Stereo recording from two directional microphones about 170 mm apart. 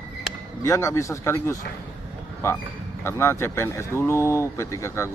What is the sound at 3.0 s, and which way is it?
Speech, 15° left (ahead or behind).